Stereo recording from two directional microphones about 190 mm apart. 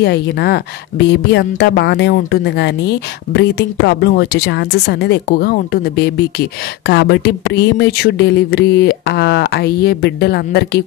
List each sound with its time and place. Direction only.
0.0 s a woman's voice: 60° left (ahead or behind)